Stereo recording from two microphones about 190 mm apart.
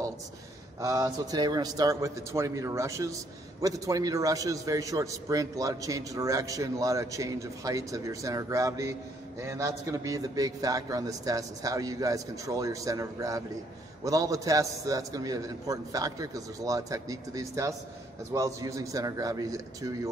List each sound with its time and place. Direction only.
0.7 s a man's voice: 20° right (ahead or behind)